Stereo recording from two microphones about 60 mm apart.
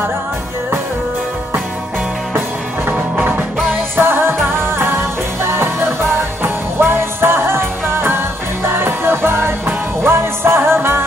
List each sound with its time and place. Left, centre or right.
2.9 s music: right
3.9 s music: right
6.4 s music: right